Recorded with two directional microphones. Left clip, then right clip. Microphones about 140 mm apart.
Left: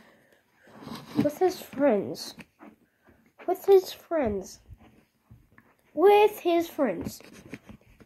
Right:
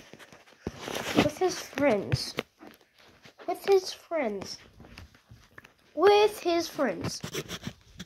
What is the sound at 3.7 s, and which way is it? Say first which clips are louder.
Speech: left 4 dB; 55° left (ahead or behind).